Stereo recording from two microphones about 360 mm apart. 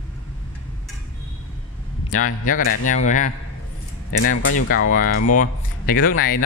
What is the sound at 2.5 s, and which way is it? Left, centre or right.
Speech, left.